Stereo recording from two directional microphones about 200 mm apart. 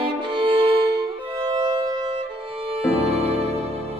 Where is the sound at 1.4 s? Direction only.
20° right (ahead or behind).